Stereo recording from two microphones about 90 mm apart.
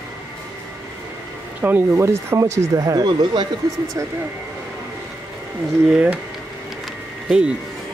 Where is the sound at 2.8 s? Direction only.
50° right (ahead or behind).